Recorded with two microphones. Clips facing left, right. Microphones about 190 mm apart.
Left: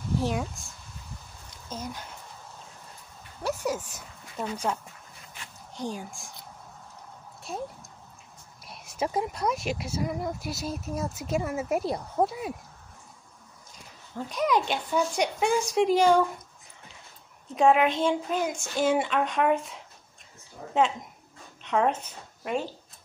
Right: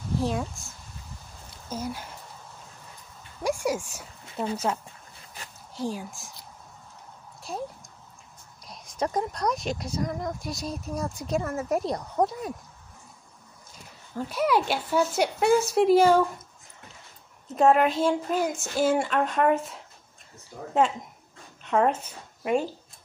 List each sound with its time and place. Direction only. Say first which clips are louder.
0.2 s speech: right 1 dB; centre (ahead or behind)
3.4 s a sound: right 3 dB; 10° right (ahead or behind)
5.4 s a sound: right 3 dB; 40° right (ahead or behind)
5.8 s speech: right 3 dB; centre (ahead or behind)
7.5 s speech: right 1 dB; centre (ahead or behind)
14.1 s speech: right 2 dB; 5° right (ahead or behind)
17.5 s speech: right 1 dB; centre (ahead or behind)
21.6 s speech: right 2 dB; 5° right (ahead or behind)